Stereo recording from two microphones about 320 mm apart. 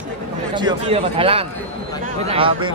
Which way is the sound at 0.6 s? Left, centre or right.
Centre.